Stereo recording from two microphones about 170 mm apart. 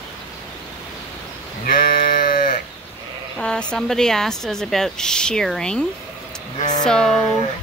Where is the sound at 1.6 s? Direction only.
60° left (ahead or behind).